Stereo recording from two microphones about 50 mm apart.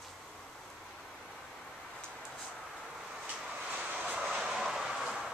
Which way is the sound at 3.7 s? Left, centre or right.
Right.